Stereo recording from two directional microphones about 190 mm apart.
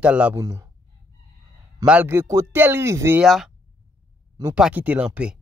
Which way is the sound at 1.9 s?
10° right (ahead or behind).